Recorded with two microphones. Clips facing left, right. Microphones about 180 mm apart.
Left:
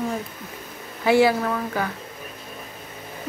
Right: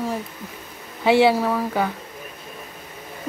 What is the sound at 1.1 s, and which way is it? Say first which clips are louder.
Speech: right 1 dB; 25° right (ahead or behind).